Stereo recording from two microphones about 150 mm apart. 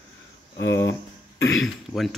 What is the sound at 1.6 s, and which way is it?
Speech, centre (ahead or behind).